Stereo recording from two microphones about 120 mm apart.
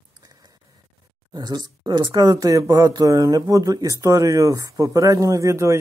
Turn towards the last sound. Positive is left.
turn(degrees=-25)  # may be behind; listen again after turning